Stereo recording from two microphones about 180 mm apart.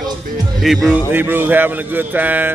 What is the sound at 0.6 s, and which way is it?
Speech, centre (ahead or behind).